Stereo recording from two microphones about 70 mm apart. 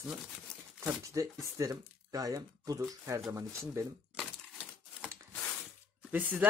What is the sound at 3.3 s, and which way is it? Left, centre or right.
Speech, right.